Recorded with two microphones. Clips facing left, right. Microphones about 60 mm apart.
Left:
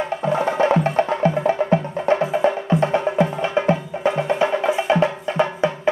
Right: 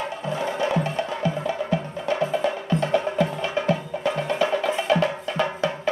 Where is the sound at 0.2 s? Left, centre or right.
Left.